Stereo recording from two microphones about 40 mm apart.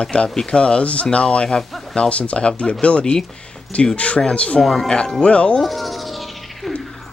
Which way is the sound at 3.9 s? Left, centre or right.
Left.